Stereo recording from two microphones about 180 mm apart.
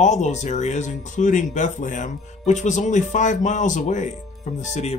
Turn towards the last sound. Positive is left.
turn(degrees=40)  # may be behind; listen again after turning